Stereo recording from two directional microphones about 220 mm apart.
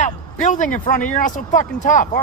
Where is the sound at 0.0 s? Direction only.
35° left (ahead or behind).